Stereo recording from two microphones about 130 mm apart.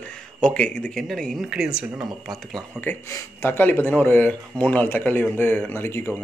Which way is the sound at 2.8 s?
20° left (ahead or behind).